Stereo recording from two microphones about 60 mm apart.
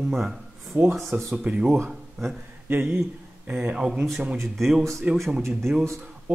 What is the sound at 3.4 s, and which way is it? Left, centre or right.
Speech, right.